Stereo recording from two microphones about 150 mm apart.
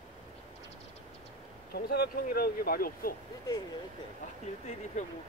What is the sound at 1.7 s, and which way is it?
Speech, 90° left.